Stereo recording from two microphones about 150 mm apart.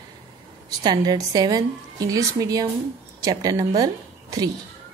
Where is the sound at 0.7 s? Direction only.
25° right (ahead or behind).